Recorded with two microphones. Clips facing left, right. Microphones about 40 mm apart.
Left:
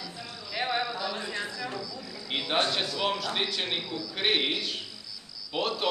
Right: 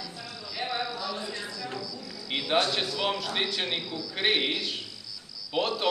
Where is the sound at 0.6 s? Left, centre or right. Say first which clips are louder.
Left 3 dB; left.